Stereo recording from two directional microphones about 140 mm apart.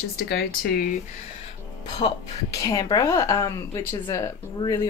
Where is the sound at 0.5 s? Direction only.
90° left.